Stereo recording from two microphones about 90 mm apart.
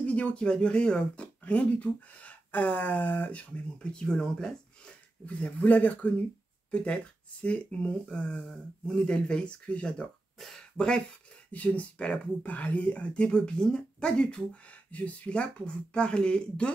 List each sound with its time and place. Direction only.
0.0 s speech: 15° left (ahead or behind)